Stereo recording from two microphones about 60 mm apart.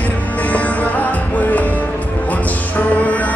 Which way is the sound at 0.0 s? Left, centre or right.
Left.